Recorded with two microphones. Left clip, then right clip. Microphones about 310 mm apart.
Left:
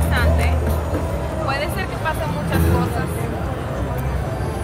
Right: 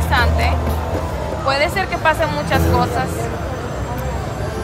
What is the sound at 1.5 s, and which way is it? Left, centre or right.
Speech, centre.